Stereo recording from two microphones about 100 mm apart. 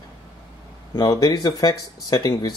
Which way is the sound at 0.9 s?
35° left (ahead or behind).